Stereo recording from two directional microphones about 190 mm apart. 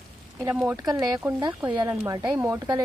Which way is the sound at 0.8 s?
20° right (ahead or behind).